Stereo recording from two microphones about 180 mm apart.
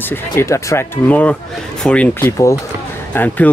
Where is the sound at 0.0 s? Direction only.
10° left (ahead or behind).